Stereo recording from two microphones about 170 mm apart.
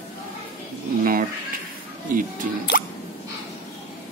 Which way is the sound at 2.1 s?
50° right (ahead or behind).